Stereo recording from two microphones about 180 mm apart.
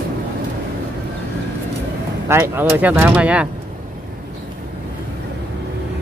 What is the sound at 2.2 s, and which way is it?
Speech, 15° right (ahead or behind).